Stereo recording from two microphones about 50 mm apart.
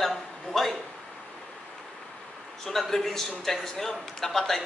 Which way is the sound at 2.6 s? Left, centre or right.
Centre.